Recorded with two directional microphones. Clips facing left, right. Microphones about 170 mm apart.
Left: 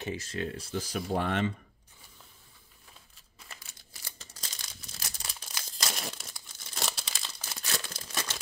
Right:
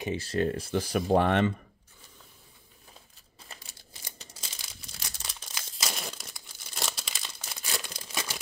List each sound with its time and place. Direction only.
0.2 s speech: 40° right (ahead or behind); by 1.5 s 65° right (ahead or behind)
4.0 s crumpling: 15° right (ahead or behind)
4.4 s crumpling: centre (ahead or behind)
7.5 s crumpling: 15° right (ahead or behind)
7.9 s crumpling: centre (ahead or behind)